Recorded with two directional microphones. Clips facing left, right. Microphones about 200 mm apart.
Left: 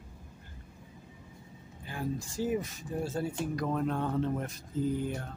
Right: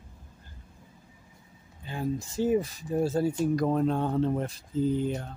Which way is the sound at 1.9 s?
25° right (ahead or behind).